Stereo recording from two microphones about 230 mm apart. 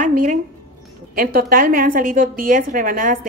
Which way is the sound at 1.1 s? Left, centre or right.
Right.